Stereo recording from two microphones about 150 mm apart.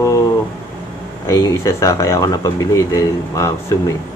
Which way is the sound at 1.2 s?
20° left (ahead or behind).